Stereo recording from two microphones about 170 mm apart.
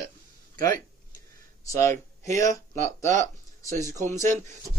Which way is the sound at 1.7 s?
15° left (ahead or behind).